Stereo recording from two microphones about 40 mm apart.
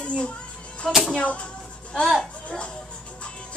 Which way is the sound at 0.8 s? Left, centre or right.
Centre.